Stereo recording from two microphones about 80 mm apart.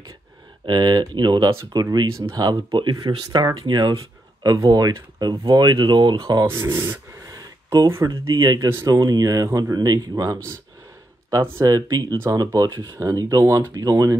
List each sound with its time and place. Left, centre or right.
0.7 s speech: right
3.3 s speech: right
4.4 s speech: right
6.1 s speech: right
6.4 s speech: right
7.2 s a sound: right
8.0 s speech: right
8.5 s speech: right
8.8 s speech: right
11.6 s speech: right
12.3 s speech: right